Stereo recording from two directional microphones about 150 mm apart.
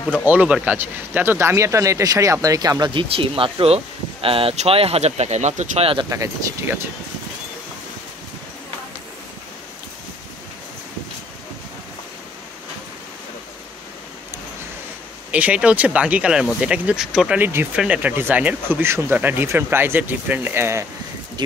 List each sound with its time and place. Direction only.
0.2 s speech: 10° right (ahead or behind); by 5.9 s 55° right (ahead or behind)
6.0 s speech: 20° right (ahead or behind)
15.3 s speech: 10° right (ahead or behind)